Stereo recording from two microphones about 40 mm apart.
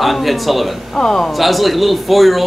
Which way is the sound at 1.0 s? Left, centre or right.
Centre.